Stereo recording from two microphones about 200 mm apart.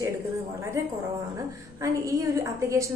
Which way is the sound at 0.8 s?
15° right (ahead or behind).